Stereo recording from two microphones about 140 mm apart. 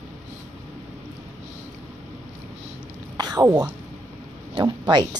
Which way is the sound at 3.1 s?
30° right (ahead or behind).